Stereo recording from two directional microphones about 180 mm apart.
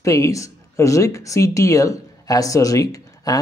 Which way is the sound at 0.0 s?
15° left (ahead or behind).